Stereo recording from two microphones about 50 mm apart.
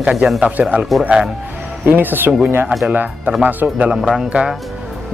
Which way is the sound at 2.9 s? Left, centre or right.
Right.